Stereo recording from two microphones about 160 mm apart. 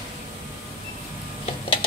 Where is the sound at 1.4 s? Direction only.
35° left (ahead or behind).